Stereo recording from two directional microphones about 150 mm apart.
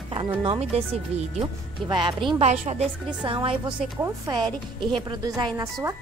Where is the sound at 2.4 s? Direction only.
50° right (ahead or behind).